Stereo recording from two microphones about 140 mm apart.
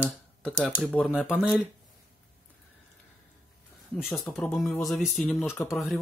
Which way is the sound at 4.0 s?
Centre (ahead or behind).